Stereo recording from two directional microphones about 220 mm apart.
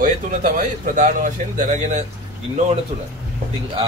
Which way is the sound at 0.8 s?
35° right (ahead or behind).